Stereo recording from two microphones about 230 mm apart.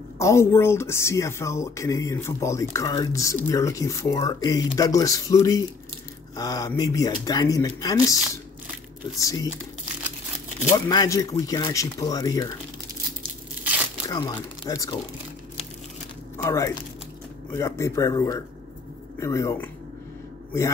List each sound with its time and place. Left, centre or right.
0.2 s speech: centre
9.2 s speech: centre
10.9 s speech: centre
14.0 s speech: centre
16.4 s speech: centre